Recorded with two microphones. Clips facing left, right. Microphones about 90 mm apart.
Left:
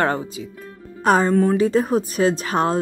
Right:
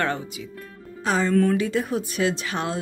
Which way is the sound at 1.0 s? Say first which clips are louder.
Left 6 dB; 50° left (ahead or behind).